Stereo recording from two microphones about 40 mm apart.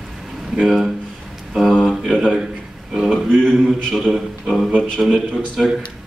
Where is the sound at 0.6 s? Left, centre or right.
Centre.